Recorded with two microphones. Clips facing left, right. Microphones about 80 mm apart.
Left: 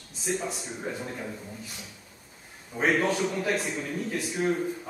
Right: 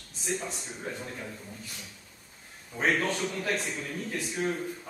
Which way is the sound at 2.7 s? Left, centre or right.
Centre.